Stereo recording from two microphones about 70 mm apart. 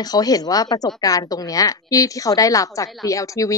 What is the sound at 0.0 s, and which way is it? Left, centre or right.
A woman's voice, left.